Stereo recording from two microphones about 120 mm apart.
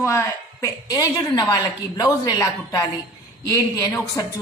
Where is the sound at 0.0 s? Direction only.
25° left (ahead or behind).